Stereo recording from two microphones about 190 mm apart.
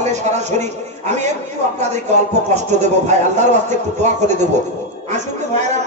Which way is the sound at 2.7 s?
40° right (ahead or behind).